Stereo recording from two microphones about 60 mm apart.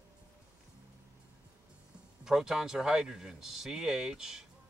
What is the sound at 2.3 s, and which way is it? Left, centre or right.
Speech, centre.